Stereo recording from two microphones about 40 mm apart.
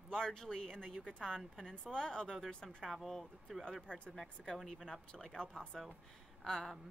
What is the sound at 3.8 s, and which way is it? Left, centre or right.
Speech, left.